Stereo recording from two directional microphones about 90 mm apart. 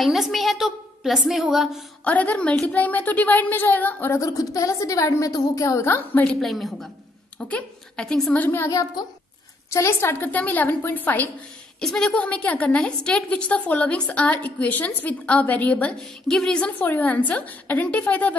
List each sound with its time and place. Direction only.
0.0 s a woman's voice: centre (ahead or behind)
2.0 s a woman's voice: 15° left (ahead or behind)
4.2 s a woman's voice: 35° left (ahead or behind)
6.2 s a woman's voice: centre (ahead or behind)
7.3 s a woman's voice: 15° left (ahead or behind)
8.4 s a woman's voice: 25° left (ahead or behind)
8.6 s a woman's voice: 40° left (ahead or behind); by 11.2 s 20° left (ahead or behind)
11.8 s a woman's voice: 10° left (ahead or behind)